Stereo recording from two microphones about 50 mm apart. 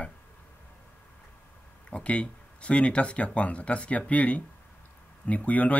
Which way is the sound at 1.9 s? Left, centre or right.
Left.